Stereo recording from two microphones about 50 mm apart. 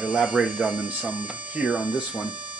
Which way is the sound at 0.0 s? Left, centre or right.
Right.